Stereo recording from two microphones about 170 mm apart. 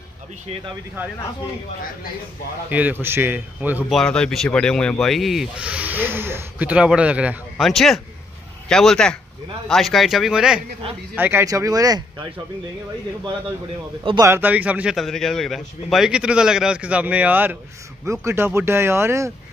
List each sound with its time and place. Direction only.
2.7 s speech: 10° right (ahead or behind)
3.9 s speech: 5° left (ahead or behind); by 12.3 s 20° right (ahead or behind)
14.0 s speech: 25° right (ahead or behind)
14.3 s speech: 10° right (ahead or behind)